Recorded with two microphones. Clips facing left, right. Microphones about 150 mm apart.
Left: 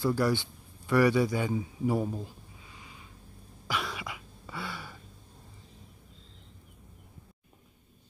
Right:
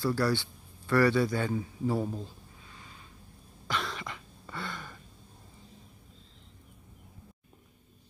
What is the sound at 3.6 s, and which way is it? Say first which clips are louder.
Throat clearing: even; 5° left (ahead or behind).